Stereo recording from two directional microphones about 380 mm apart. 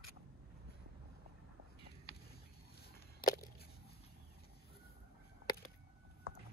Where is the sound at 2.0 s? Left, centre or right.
Left.